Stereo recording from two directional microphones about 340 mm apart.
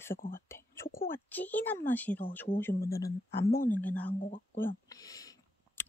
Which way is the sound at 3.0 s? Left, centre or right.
Centre.